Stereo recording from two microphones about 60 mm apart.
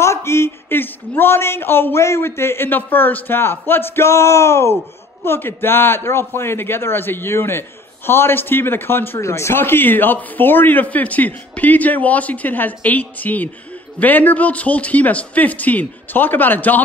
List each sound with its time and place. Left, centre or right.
0.0 s speech: left
9.2 s a man's voice: left